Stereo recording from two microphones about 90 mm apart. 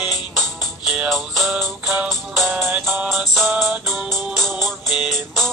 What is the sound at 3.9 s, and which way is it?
Music, centre (ahead or behind).